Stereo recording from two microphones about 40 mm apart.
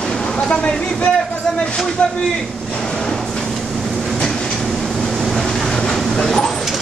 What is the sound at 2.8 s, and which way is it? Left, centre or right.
Train, centre.